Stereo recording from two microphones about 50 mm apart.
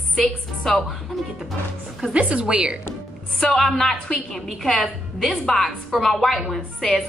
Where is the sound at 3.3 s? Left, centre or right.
Centre.